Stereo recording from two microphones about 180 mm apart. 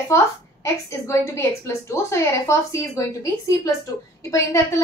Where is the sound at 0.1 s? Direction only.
15° left (ahead or behind).